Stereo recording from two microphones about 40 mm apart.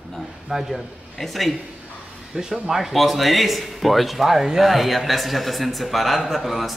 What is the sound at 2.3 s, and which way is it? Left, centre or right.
Speech, right.